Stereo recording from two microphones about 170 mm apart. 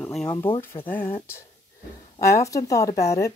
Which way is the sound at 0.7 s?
25° left (ahead or behind).